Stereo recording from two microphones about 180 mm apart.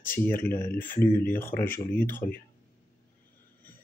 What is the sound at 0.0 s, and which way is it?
Speech, 10° left (ahead or behind).